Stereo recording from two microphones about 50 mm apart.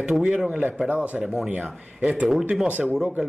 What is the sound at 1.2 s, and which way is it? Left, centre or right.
Speech, centre.